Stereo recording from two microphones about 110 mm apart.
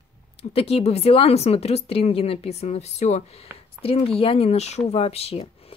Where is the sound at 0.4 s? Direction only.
65° left (ahead or behind); by 3.3 s 85° left.